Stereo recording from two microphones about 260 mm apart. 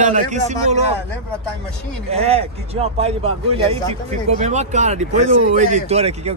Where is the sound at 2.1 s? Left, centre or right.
Right.